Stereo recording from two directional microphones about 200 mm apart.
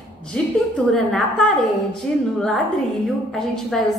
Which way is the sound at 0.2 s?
5° left (ahead or behind).